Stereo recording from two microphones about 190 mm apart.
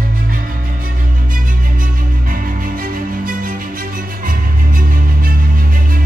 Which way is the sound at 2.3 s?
45° right (ahead or behind).